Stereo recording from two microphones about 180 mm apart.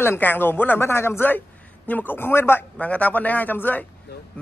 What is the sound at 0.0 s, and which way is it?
A man's voice, 10° left (ahead or behind).